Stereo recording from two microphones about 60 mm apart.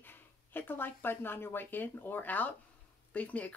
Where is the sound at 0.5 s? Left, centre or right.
Left.